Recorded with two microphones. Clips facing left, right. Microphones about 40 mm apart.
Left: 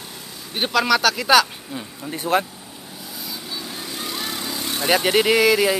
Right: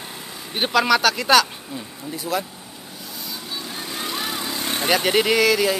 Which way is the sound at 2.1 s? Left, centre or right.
Left.